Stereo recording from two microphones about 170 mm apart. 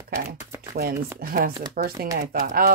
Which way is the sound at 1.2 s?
60° right (ahead or behind).